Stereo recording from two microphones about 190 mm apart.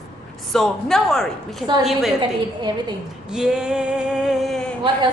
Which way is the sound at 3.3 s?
5° right (ahead or behind).